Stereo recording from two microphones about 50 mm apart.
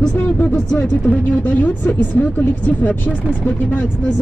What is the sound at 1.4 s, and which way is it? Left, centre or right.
Speech, left.